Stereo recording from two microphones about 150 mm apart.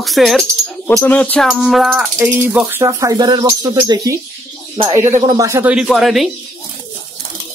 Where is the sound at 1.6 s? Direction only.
Centre (ahead or behind).